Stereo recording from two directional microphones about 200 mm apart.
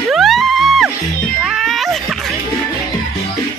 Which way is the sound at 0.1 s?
Centre (ahead or behind).